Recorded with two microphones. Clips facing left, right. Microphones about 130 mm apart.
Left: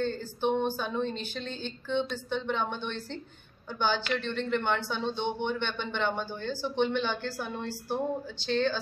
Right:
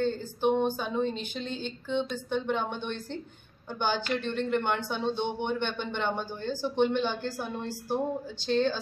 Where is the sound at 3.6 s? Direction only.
50° right (ahead or behind).